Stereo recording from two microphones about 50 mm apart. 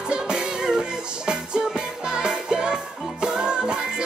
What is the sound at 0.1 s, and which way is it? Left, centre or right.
Music, centre.